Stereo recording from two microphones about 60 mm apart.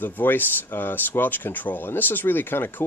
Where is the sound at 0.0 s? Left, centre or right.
Left.